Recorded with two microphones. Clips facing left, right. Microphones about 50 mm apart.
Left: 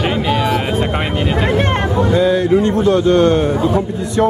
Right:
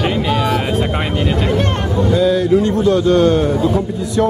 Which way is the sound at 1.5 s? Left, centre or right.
Left.